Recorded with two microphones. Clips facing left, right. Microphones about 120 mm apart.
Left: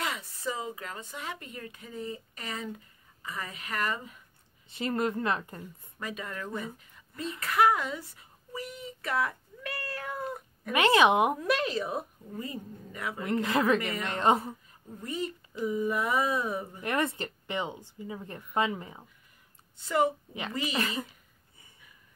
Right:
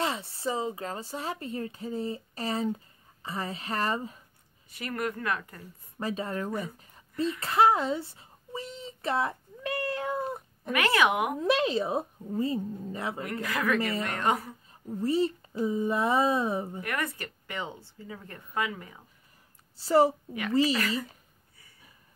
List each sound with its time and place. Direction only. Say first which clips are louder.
0.0 s speech: right 4 dB; 30° right (ahead or behind)
4.6 s speech: left 3 dB; 25° left (ahead or behind)
5.9 s speech: right 6 dB; 30° right (ahead or behind)
7.3 s a sound: right 1 dB; 30° right (ahead or behind)
10.7 s speech: left 3 dB; 25° left (ahead or behind)
11.3 s speech: right 3 dB; 25° right (ahead or behind)
13.2 s speech: left 7 dB; 25° left (ahead or behind)
15.0 s speech: right 8 dB; 30° right (ahead or behind)
16.8 s speech: left 3 dB; 25° left (ahead or behind)
19.8 s speech: right 5 dB; 35° right (ahead or behind)
20.7 s speech: right 2 dB; 25° left (ahead or behind)